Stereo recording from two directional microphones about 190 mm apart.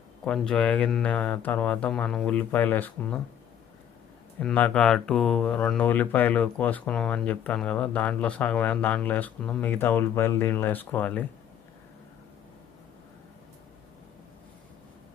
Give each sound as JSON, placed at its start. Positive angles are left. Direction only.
{"t": 0.2, "sound": "speech", "side_deg": 5}
{"t": 4.4, "sound": "speech", "side_deg": 5}